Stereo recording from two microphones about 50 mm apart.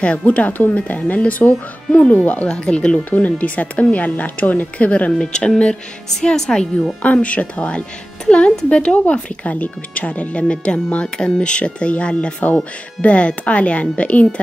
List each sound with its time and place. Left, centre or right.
0.0 s speech: left
2.4 s a woman's voice: centre
3.1 s speech: left
5.2 s a woman's voice: centre
7.0 s speech: left